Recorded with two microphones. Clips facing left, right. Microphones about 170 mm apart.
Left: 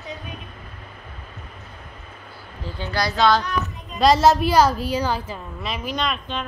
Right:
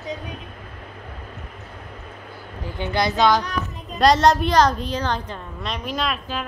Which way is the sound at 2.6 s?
15° right (ahead or behind).